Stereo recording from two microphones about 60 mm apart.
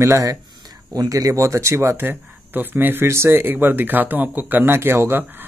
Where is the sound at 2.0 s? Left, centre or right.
Right.